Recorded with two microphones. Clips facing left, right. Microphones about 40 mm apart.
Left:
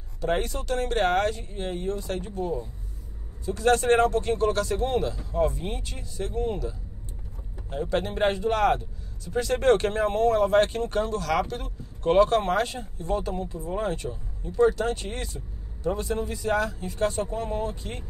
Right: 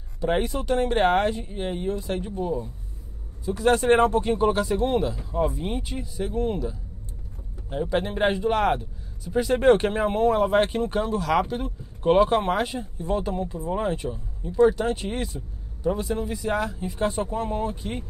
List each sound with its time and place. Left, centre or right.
0.2 s a man's voice: centre
7.7 s a man's voice: centre